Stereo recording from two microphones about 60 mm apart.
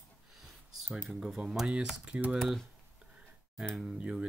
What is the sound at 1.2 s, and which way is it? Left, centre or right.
Speech, centre.